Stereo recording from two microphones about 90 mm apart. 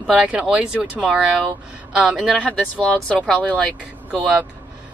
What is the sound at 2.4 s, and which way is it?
Speech, 15° left (ahead or behind).